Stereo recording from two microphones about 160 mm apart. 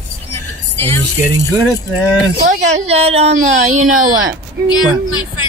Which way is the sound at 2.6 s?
40° right (ahead or behind).